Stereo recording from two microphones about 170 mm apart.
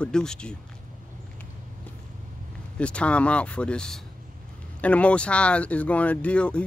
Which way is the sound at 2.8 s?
5° left (ahead or behind).